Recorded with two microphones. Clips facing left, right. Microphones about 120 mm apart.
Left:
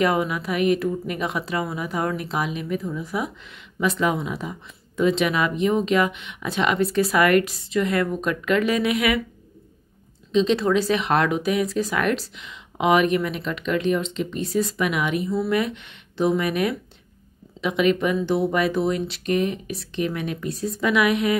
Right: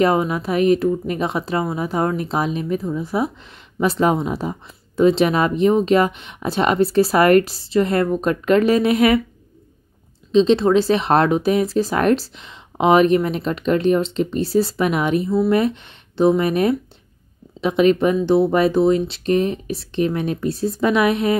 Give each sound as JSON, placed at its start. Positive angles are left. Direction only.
{"t": 0.0, "sound": "speech", "side_deg": -30}
{"t": 10.3, "sound": "speech", "side_deg": -30}